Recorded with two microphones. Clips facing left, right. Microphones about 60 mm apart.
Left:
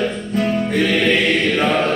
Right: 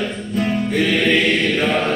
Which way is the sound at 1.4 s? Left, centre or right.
Left.